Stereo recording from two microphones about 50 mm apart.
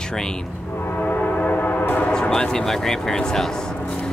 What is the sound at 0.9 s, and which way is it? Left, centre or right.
Train, left.